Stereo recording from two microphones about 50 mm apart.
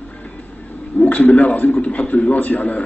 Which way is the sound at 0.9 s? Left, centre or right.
Left.